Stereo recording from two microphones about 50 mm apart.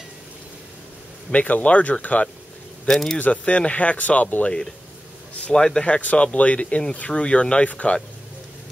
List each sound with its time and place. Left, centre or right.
1.3 s speech: left
2.9 s speech: centre
3.2 s speech: left
5.5 s speech: centre
5.9 s speech: left